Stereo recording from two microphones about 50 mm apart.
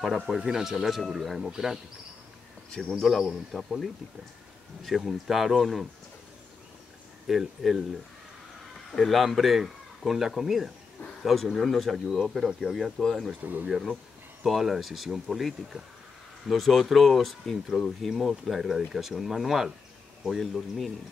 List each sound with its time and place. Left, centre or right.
0.3 s speech: centre
2.7 s a man's voice: centre
7.2 s speech: centre
8.9 s speech: centre
11.5 s speech: centre
13.0 s a man's voice: centre
13.4 s speech: right
13.7 s speech: centre
15.7 s speech: centre
16.4 s speech: centre